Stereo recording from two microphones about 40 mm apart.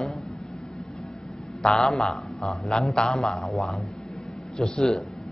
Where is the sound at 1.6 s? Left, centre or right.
Centre.